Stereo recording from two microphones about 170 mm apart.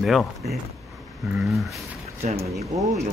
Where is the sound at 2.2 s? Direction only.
35° right (ahead or behind).